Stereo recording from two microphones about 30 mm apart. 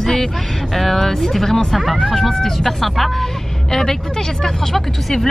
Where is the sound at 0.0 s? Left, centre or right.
Centre.